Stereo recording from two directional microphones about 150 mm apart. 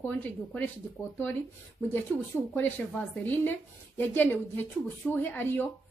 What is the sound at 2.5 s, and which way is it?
Speech, 10° left (ahead or behind).